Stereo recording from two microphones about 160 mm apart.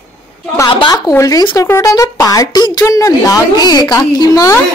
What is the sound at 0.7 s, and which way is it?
Speech, 30° left (ahead or behind).